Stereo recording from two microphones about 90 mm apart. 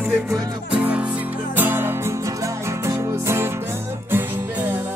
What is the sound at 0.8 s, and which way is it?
Music, 15° right (ahead or behind).